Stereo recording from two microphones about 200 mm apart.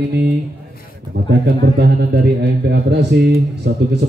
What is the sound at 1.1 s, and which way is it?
A man's voice, 55° right (ahead or behind).